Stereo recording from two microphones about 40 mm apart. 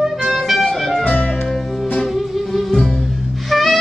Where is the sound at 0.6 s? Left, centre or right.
Centre.